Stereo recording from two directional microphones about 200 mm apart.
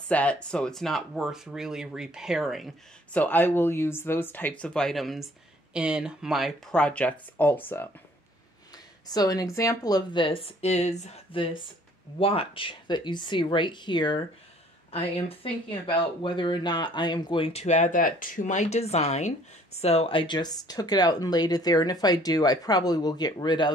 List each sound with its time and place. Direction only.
0.1 s speech: 5° left (ahead or behind); by 23.7 s 20° left (ahead or behind)